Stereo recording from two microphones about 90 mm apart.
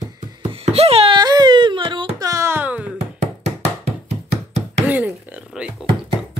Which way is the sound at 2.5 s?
15° right (ahead or behind).